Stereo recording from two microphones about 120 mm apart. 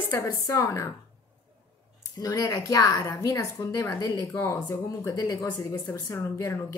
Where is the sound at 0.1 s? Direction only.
25° left (ahead or behind).